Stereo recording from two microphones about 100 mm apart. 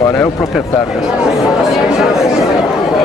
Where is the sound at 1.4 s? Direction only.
Centre (ahead or behind).